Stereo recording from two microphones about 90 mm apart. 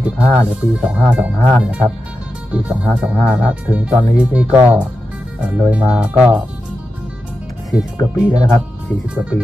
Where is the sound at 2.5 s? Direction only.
10° right (ahead or behind).